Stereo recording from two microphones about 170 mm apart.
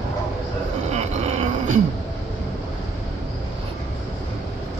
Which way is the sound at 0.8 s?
40° right (ahead or behind).